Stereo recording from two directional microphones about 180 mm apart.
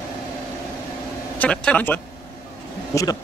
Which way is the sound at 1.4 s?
5° left (ahead or behind).